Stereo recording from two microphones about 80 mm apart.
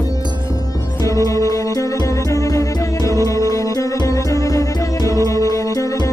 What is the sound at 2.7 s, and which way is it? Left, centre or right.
Music, left.